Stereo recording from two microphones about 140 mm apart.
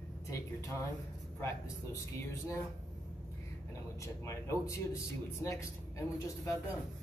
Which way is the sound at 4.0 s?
20° left (ahead or behind).